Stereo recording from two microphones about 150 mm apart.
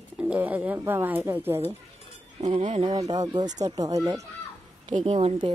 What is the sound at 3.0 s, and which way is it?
Speech, 25° right (ahead or behind).